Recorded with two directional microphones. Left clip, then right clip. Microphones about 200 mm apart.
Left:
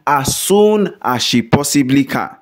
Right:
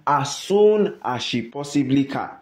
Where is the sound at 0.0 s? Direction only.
55° left (ahead or behind).